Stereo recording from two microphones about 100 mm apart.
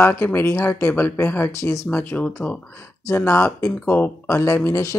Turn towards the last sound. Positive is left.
turn(degrees=30)  # may be behind; listen again after turning